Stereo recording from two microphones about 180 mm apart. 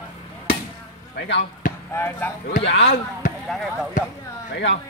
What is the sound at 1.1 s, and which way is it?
Speech, 65° left (ahead or behind).